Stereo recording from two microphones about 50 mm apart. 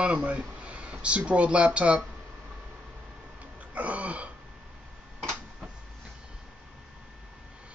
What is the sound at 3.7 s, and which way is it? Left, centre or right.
Speech, right.